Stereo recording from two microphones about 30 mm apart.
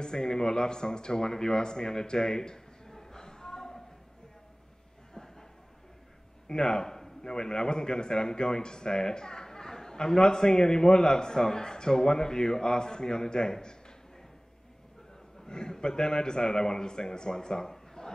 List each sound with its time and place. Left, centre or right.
0.0 s a man's voice: left
6.4 s a man's voice: left
15.4 s a man's voice: left